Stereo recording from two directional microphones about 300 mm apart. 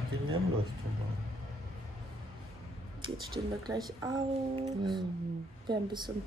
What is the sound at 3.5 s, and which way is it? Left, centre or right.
A woman's voice, centre.